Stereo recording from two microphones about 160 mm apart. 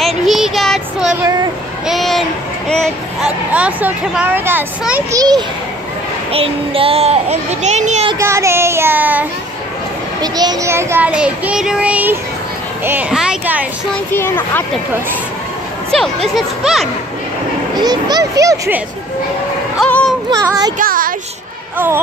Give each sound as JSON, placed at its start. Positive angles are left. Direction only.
{"t": 0.0, "sound": "child singing", "side_deg": 0}
{"t": 1.9, "sound": "a sound", "side_deg": 0}
{"t": 2.7, "sound": "speech", "side_deg": 5}
{"t": 3.3, "sound": "child singing", "side_deg": -10}
{"t": 6.3, "sound": "a child's voice", "side_deg": -35}
{"t": 8.2, "sound": "child singing", "side_deg": -15}
{"t": 10.2, "sound": "child singing", "side_deg": -25}
{"t": 13.9, "sound": "a child's voice", "side_deg": 15}
{"t": 16.3, "sound": "speech", "side_deg": 0}
{"t": 17.8, "sound": "a child's voice", "side_deg": -25}
{"t": 19.8, "sound": "a sound", "side_deg": 5}
{"t": 20.2, "sound": "a child's voice", "side_deg": -25}
{"t": 20.7, "sound": "speech", "side_deg": -60}
{"t": 21.7, "sound": "child singing", "side_deg": -15}